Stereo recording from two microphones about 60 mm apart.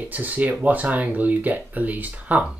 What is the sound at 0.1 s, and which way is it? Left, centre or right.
Speech, right.